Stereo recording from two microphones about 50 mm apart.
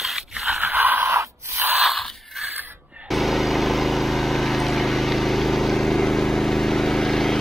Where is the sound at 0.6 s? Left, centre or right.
Right.